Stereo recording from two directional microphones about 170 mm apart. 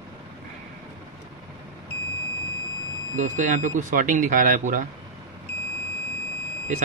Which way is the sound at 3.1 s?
45° right (ahead or behind).